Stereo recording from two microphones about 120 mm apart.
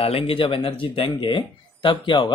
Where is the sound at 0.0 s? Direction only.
50° left (ahead or behind).